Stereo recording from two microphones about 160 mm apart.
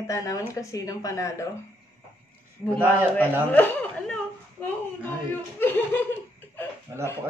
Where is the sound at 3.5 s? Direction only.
10° left (ahead or behind).